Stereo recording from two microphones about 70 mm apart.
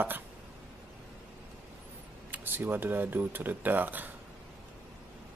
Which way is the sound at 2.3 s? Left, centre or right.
Right.